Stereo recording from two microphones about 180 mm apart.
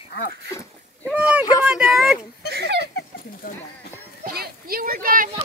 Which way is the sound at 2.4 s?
65° right (ahead or behind).